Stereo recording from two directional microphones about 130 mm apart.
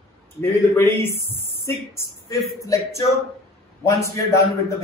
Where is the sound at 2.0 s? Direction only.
25° left (ahead or behind).